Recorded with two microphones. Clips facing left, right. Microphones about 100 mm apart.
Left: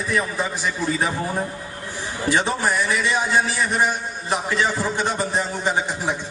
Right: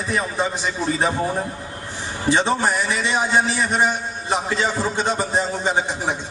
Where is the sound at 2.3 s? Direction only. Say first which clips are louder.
Right 2 dB; 25° right (ahead or behind).